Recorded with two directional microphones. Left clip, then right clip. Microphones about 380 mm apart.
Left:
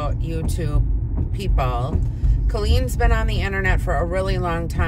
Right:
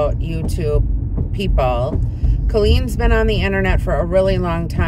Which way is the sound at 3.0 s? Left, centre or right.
Centre.